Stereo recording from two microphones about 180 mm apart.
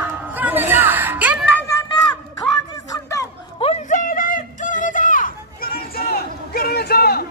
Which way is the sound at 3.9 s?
50° left (ahead or behind).